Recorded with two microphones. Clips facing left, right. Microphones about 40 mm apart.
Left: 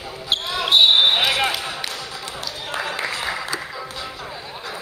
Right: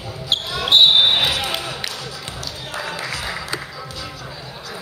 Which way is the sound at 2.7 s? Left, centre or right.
Left.